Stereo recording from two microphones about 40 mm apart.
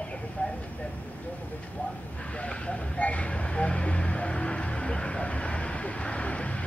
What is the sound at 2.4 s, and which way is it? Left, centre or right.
Vehicle, left.